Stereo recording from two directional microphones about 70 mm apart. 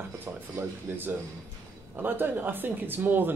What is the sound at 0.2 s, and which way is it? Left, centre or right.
Speech, right.